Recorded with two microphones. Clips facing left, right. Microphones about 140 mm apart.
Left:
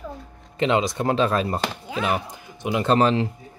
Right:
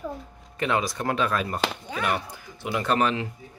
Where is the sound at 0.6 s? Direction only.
20° left (ahead or behind).